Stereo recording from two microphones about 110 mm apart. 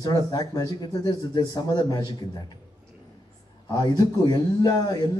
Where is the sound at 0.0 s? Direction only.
40° left (ahead or behind).